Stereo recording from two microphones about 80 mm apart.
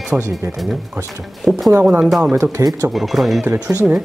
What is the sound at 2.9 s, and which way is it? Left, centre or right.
Speech, centre.